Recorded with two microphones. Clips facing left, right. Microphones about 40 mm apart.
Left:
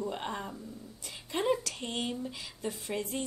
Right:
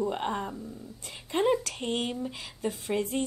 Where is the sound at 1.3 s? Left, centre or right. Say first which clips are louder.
Right 4 dB; right.